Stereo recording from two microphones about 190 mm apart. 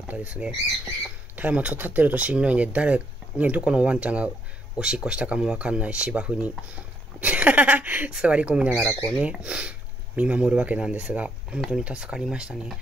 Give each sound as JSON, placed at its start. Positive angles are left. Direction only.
{"t": 1.3, "sound": "speech", "side_deg": -5}